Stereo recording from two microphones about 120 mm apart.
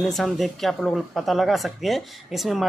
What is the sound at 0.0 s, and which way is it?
Speech, centre (ahead or behind).